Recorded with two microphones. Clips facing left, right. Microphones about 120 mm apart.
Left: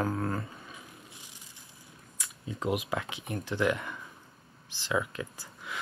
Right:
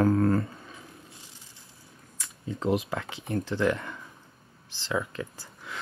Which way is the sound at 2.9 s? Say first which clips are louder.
Right 3 dB; 15° left (ahead or behind).